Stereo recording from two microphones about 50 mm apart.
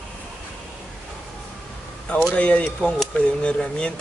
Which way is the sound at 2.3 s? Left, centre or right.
Left.